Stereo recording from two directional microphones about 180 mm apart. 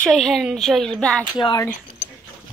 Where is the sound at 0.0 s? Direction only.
Centre (ahead or behind).